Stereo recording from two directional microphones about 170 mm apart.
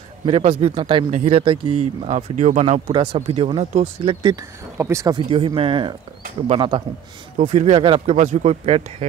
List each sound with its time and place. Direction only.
0.2 s speech: 40° right (ahead or behind)
2.0 s speech: 45° right (ahead or behind)
2.9 s speech: 30° right (ahead or behind)
4.7 s speech: 15° right (ahead or behind); by 8.8 s 40° right (ahead or behind)